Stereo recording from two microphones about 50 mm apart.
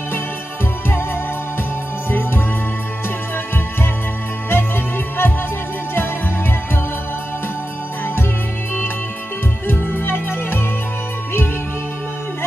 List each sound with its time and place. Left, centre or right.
2.0 s music: left
4.5 s music: left
9.7 s music: left